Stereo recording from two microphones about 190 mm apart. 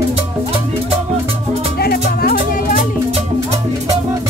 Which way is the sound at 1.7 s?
55° left (ahead or behind).